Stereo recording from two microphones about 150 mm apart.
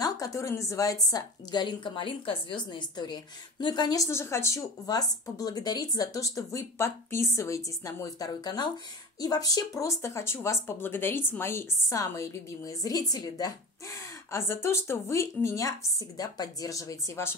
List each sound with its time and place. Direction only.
0.0 s a woman's voice: 20° left (ahead or behind)